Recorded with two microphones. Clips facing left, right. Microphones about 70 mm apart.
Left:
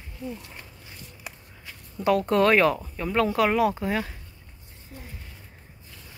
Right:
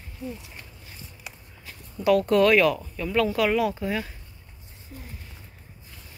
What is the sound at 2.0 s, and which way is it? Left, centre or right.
Speech, left.